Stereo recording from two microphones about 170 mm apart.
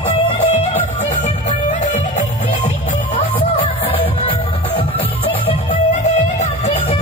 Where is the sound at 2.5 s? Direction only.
30° left (ahead or behind).